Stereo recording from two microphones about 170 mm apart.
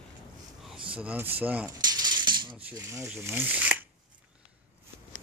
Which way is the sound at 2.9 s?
15° right (ahead or behind).